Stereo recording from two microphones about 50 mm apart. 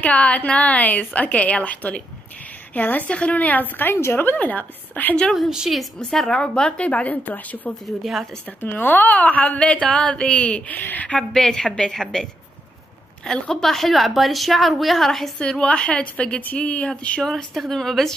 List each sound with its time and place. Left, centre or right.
0.0 s a woman's voice: left
6.3 s a woman's voice: centre; by 7.7 s left
7.8 s a woman's voice: centre
8.5 s a woman's voice: left
10.8 s a woman's voice: left
11.1 s a woman's voice: centre
15.6 s a woman's voice: left
17.2 s a woman's voice: centre